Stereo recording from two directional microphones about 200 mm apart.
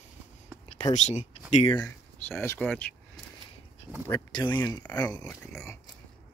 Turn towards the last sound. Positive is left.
turn(degrees=10)  # may be behind; listen again after turning